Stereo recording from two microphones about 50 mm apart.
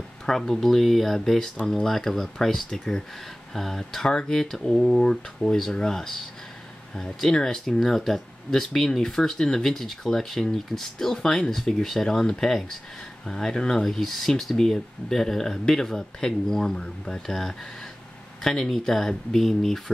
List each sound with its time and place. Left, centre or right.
0.3 s speech: centre